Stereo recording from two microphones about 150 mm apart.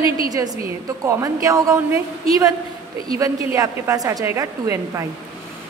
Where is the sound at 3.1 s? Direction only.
20° right (ahead or behind).